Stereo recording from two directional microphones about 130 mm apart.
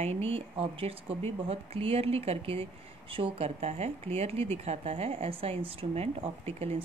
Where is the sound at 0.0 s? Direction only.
50° right (ahead or behind).